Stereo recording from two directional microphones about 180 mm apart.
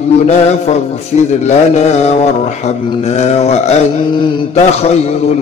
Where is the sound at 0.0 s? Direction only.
35° left (ahead or behind).